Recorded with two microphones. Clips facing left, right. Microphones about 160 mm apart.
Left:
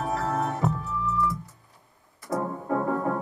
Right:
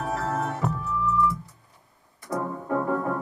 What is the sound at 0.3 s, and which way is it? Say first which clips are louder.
Music: left 1 dB; 20° left (ahead or behind).